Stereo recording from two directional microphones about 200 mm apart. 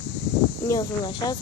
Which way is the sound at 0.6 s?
20° left (ahead or behind).